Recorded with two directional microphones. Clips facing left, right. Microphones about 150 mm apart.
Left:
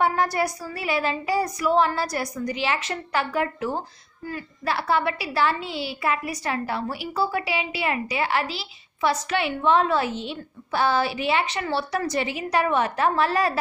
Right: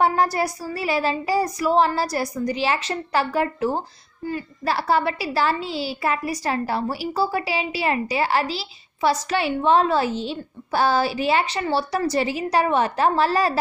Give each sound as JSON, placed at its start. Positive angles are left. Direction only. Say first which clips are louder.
{"t": 0.0, "sound": "a woman's voice", "louder": "right 2 dB", "side_deg": -35}